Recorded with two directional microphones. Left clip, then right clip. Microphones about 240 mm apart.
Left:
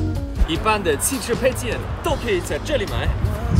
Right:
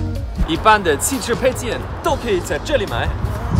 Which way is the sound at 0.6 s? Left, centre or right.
Centre.